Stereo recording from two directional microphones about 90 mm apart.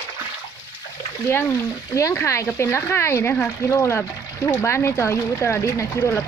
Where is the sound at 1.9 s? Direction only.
35° left (ahead or behind).